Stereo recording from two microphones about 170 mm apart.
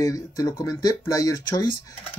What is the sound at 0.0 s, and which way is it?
Speech, 20° left (ahead or behind).